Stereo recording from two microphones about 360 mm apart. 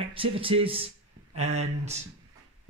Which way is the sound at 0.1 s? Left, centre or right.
Centre.